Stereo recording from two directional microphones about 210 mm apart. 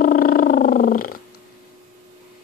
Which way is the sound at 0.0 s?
40° left (ahead or behind).